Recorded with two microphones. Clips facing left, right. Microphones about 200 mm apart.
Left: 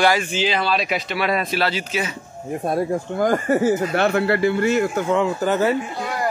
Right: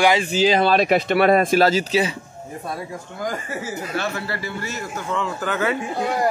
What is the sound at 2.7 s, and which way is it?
Speech, 55° left (ahead or behind).